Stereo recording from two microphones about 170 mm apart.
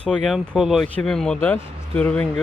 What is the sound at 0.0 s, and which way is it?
Speech, 5° left (ahead or behind).